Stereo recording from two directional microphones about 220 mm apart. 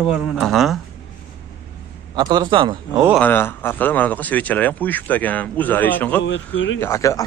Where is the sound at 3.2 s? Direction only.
10° left (ahead or behind).